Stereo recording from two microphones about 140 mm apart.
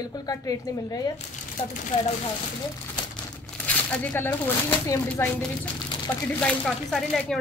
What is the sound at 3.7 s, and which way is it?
A woman's voice, 10° left (ahead or behind).